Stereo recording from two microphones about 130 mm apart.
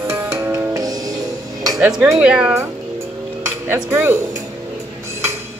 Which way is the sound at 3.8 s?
20° right (ahead or behind).